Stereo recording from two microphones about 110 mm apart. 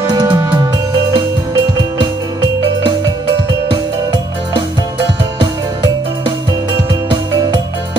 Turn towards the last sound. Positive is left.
turn(degrees=-45)  # may be behind; listen again after turning